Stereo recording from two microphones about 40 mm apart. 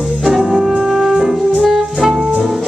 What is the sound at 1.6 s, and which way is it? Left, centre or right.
Music, centre.